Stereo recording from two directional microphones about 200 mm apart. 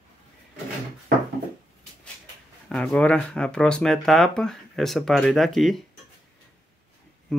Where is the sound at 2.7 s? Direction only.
5° left (ahead or behind).